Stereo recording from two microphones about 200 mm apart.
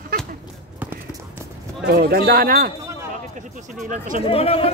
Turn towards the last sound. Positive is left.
turn(degrees=30)  # may be behind; listen again after turning